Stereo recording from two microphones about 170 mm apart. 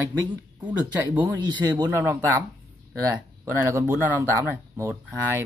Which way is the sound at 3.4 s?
15° right (ahead or behind).